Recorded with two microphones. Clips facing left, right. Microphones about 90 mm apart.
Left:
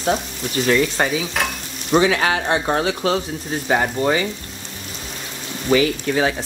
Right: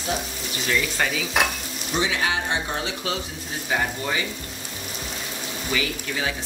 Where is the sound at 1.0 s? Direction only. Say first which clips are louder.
Left 5 dB; 35° left (ahead or behind).